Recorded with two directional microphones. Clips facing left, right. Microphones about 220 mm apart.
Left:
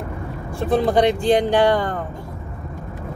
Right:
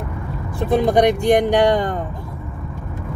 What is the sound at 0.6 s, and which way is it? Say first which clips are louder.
Speech: right 2 dB; 20° right (ahead or behind).